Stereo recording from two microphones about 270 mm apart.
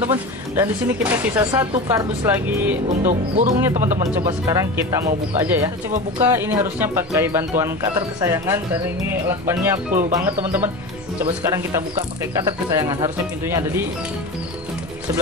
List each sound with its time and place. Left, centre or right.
0.1 s speech: centre
2.9 s speech: right
4.2 s speech: centre
6.2 s speech: centre